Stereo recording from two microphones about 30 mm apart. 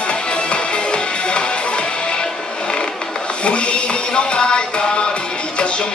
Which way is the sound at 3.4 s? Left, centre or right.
Left.